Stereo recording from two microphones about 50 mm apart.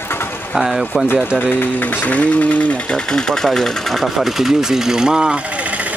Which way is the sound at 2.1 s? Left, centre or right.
Left.